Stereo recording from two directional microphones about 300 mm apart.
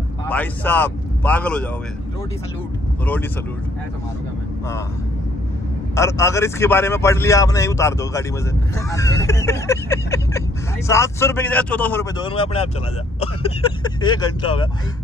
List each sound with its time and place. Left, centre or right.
0.3 s speech: centre
5.9 s speech: centre